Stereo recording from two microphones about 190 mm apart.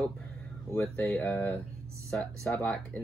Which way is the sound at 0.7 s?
10° left (ahead or behind).